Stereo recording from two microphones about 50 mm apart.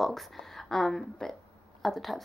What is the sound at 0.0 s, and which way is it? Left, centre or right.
A woman's voice, centre.